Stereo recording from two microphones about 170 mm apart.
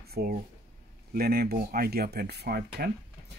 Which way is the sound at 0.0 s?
65° right (ahead or behind).